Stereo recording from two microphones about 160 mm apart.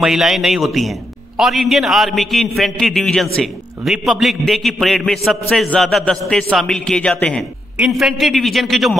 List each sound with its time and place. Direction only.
0.0 s a man's voice: centre (ahead or behind)